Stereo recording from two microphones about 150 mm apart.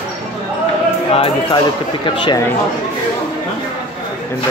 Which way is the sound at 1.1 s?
40° left (ahead or behind).